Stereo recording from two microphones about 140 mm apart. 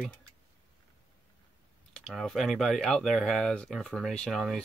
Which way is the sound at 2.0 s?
Centre (ahead or behind).